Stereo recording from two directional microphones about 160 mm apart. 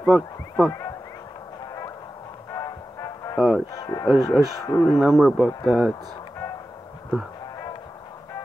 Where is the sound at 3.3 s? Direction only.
Centre (ahead or behind).